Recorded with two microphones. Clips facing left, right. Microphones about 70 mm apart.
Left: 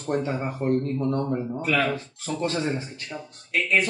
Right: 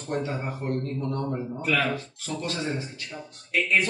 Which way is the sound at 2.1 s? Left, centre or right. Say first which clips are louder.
Left 4 dB; left.